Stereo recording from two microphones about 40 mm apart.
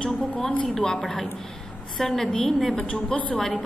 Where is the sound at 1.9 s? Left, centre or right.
Centre.